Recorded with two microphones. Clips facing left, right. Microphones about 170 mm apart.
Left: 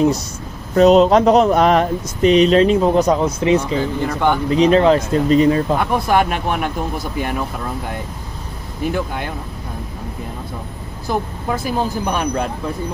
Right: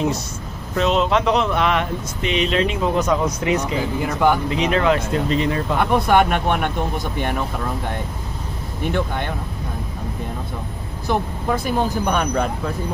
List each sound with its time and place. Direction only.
0.7 s speech: 40° left (ahead or behind)
4.0 s speech: 5° right (ahead or behind)
4.5 s speech: 35° left (ahead or behind)
5.8 s speech: centre (ahead or behind)
8.8 s speech: 5° left (ahead or behind)
11.1 s speech: centre (ahead or behind)